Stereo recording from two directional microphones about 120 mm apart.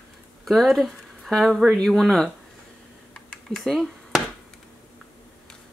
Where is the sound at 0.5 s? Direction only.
Centre (ahead or behind).